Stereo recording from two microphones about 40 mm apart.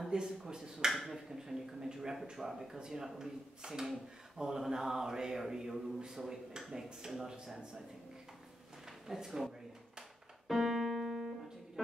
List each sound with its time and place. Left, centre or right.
0.1 s a sound: centre
0.9 s finger snapping: centre
1.3 s speech: centre
2.3 s a sound: centre
8.8 s drawer open or close: centre
10.5 s music: centre